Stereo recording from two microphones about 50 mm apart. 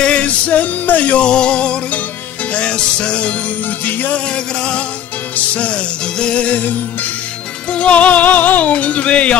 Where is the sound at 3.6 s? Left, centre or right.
Left.